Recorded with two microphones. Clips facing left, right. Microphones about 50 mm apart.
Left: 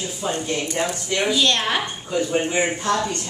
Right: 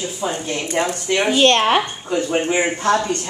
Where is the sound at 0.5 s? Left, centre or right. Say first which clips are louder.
Right 3 dB; right.